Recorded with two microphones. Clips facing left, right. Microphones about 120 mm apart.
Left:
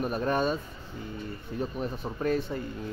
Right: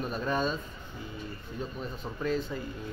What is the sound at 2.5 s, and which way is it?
Speech, 35° left (ahead or behind).